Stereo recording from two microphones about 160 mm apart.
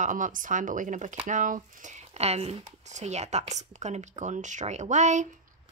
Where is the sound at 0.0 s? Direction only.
55° right (ahead or behind).